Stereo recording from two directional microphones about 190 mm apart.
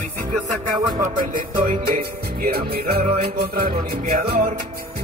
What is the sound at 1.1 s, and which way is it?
Music, 45° right (ahead or behind).